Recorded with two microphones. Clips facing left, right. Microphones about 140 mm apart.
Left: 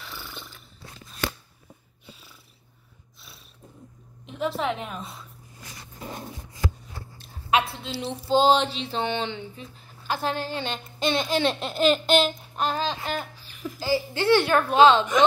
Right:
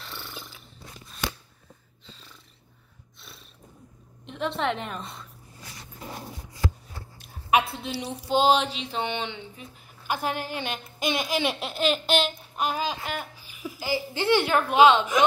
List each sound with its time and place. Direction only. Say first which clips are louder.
0.0 s dog: even; 5° left (ahead or behind)
2.0 s purr: left 1 dB; 10° left (ahead or behind)
4.3 s a woman's voice: left 1 dB; centre (ahead or behind)
7.5 s speech: right 1 dB; 15° right (ahead or behind)
8.1 s mantra: left 2 dB; 30° left (ahead or behind)
8.9 s a woman's voice: left 2 dB; 15° right (ahead or behind)